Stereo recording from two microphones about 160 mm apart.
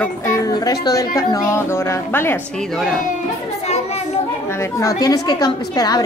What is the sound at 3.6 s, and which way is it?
Children playing, 40° left (ahead or behind).